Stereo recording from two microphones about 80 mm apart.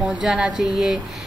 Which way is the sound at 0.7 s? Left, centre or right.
Centre.